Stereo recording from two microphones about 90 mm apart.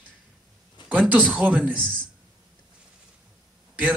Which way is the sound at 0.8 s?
20° right (ahead or behind).